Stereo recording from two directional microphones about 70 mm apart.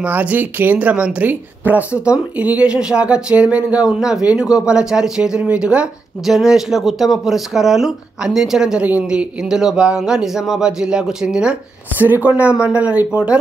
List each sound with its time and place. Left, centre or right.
0.0 s speech: right
6.2 s speech: centre
8.8 s speech: centre
12.0 s speech: right